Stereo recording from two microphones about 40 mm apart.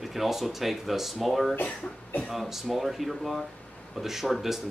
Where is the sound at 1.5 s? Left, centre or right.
Left.